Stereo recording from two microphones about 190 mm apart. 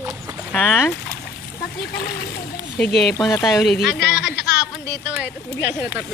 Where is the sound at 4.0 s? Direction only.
60° left (ahead or behind).